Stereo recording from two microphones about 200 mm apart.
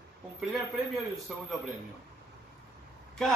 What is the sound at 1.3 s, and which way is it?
Speech, 5° right (ahead or behind).